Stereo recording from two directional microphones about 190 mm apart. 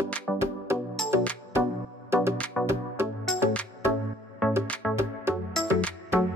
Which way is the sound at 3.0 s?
10° right (ahead or behind).